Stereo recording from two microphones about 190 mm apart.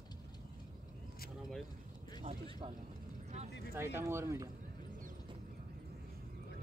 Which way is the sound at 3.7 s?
10° right (ahead or behind).